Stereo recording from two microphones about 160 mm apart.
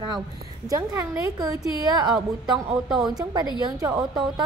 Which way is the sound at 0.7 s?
20° right (ahead or behind).